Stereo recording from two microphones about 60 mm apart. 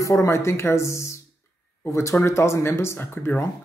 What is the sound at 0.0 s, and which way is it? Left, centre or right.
A man's voice, left.